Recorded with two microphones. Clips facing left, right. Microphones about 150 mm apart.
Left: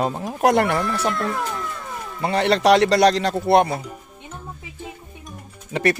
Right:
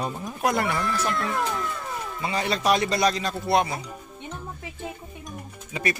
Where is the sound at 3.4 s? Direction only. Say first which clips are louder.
Left 6 dB; 55° left (ahead or behind).